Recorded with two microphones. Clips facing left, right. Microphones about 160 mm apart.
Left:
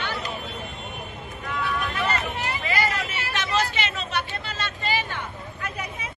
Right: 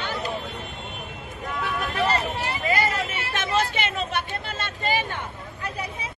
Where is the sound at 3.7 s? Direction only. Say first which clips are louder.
Right 2 dB; 55° right (ahead or behind).